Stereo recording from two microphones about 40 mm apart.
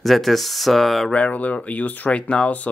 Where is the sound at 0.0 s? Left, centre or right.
Centre.